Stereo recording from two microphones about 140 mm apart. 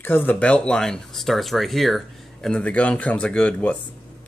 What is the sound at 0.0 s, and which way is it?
Speech, 15° left (ahead or behind).